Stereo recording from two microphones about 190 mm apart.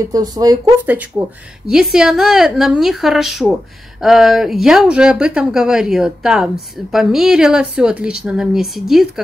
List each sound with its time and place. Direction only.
0.1 s speech: 20° right (ahead or behind)
1.7 s speech: 5° right (ahead or behind)